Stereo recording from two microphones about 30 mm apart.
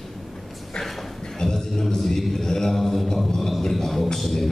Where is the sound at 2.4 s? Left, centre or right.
Centre.